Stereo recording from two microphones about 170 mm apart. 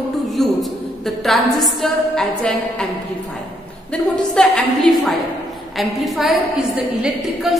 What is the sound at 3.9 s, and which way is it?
A woman's voice, 5° left (ahead or behind).